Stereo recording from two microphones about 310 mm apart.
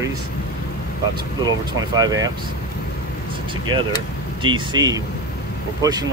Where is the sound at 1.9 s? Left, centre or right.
Centre.